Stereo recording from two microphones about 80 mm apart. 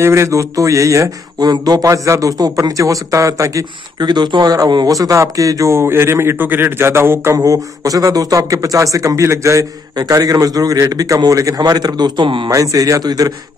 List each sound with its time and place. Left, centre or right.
0.0 s a man's voice: right
1.4 s a man's voice: right
4.0 s speech: right
4.9 s a man's voice: right
7.3 s a man's voice: right
9.9 s a man's voice: right
12.4 s a man's voice: right